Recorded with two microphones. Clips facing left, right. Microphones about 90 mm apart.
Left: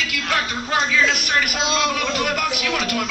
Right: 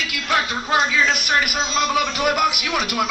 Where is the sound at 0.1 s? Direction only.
15° right (ahead or behind).